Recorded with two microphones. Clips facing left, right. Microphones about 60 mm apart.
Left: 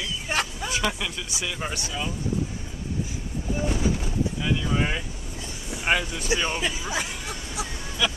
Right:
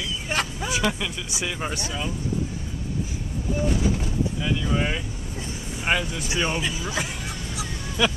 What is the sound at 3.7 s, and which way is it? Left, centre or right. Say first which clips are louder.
Speech: right 1 dB; centre.